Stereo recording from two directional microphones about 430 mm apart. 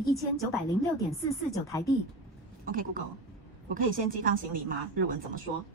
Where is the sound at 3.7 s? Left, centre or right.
Centre.